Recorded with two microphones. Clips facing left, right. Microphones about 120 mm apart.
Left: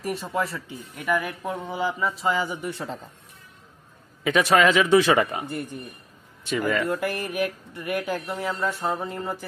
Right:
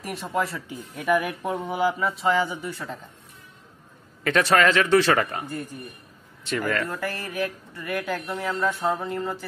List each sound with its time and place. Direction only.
0.0 s mantra: centre (ahead or behind)
0.7 s speech: 15° right (ahead or behind)
1.8 s mantra: 5° right (ahead or behind)
2.4 s speech: 15° left (ahead or behind)
4.2 s speech: 10° left (ahead or behind)
6.5 s speech: 10° left (ahead or behind)